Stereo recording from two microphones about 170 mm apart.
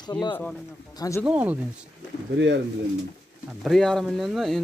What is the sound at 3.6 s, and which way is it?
Speech, 5° left (ahead or behind).